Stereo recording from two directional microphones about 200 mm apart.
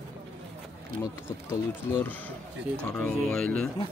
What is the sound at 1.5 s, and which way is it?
Speech, 15° left (ahead or behind).